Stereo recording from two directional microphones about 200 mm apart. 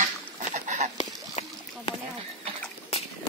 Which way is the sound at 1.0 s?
30° left (ahead or behind).